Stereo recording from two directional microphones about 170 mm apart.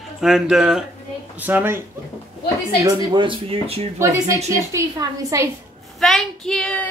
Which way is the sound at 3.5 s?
35° right (ahead or behind).